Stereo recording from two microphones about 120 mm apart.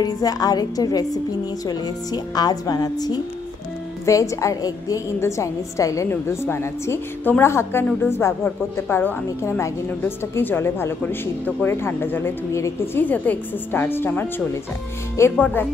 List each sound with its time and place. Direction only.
0.0 s a woman's voice: 30° left (ahead or behind)